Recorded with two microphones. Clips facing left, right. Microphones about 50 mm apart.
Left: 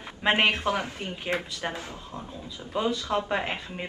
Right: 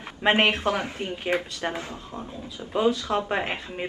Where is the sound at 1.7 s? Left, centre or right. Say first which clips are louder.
Right 3 dB; right.